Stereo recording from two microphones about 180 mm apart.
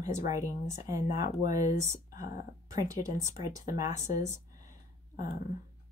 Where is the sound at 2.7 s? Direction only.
20° right (ahead or behind).